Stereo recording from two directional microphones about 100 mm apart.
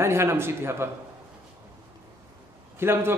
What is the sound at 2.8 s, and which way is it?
Speech, 25° right (ahead or behind).